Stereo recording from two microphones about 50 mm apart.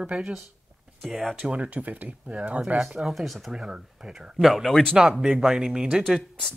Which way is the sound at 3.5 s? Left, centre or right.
Centre.